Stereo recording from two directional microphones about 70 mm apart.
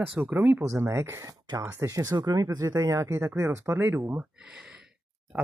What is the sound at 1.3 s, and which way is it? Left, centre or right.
Speech, right.